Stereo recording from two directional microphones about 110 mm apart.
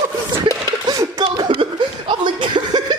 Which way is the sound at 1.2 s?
40° right (ahead or behind).